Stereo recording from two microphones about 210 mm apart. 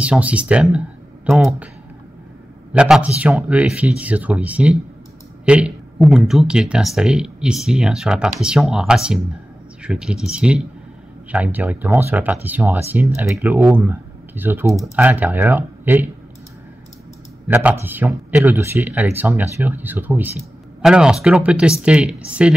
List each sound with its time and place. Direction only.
0.0 s speech: 5° right (ahead or behind)
2.7 s a man's voice: 5° right (ahead or behind)
17.5 s speech: 10° right (ahead or behind)